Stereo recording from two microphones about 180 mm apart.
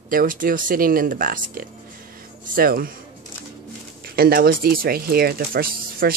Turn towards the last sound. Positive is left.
turn(degrees=-55)  # may be behind; listen again after turning